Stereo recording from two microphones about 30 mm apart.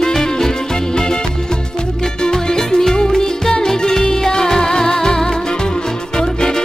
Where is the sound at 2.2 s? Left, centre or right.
Left.